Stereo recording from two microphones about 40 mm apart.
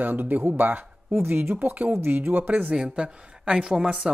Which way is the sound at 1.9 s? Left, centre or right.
Right.